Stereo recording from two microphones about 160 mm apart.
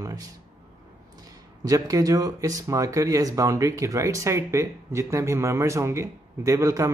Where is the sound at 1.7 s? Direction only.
20° right (ahead or behind).